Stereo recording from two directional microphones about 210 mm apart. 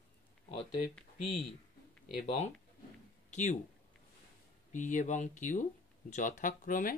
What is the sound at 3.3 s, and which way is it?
Speech, 35° left (ahead or behind).